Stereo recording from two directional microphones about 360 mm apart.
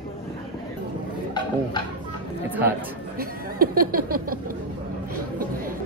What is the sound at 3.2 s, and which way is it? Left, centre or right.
Speech, right.